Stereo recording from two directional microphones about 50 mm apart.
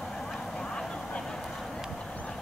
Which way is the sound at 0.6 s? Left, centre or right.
Centre.